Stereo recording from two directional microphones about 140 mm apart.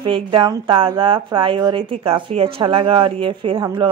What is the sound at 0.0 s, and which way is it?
Speech, 35° right (ahead or behind).